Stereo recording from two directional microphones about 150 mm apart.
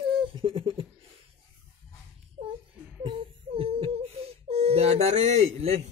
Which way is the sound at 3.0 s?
40° right (ahead or behind).